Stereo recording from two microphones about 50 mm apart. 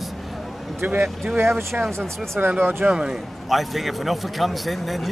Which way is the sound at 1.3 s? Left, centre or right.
Right.